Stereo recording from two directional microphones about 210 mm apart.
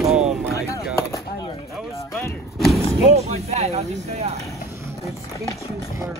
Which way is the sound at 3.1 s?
30° right (ahead or behind).